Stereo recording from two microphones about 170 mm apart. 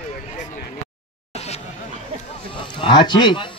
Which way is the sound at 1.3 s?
40° left (ahead or behind).